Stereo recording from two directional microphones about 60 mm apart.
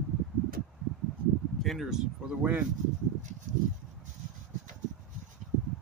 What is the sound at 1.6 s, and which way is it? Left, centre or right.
Speech, centre.